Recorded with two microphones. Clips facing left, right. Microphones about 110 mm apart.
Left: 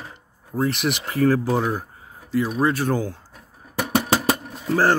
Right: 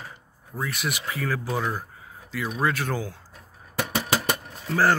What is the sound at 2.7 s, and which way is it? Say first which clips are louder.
Speech: left 5 dB; 35° left (ahead or behind).